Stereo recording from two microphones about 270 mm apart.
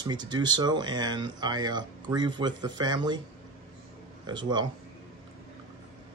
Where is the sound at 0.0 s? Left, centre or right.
Centre.